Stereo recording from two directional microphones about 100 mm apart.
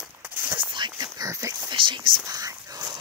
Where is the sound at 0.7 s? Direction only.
50° right (ahead or behind).